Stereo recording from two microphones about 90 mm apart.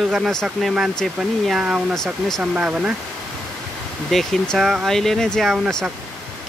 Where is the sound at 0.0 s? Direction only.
5° right (ahead or behind).